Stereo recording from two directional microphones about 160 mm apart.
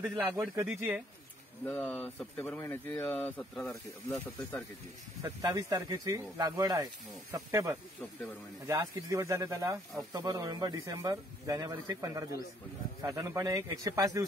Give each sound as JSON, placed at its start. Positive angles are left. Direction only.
{"t": 0.0, "sound": "speech", "side_deg": -5}
{"t": 1.7, "sound": "speech", "side_deg": 10}
{"t": 5.2, "sound": "speech", "side_deg": -20}